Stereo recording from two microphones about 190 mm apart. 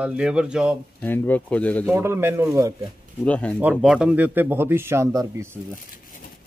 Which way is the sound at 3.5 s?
5° right (ahead or behind).